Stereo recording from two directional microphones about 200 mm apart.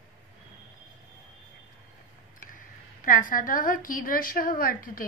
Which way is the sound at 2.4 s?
40° left (ahead or behind).